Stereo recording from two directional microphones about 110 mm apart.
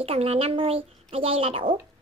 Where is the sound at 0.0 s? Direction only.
65° right (ahead or behind).